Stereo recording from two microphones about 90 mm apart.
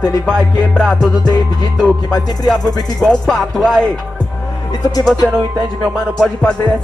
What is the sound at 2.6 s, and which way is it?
Speech, 45° left (ahead or behind).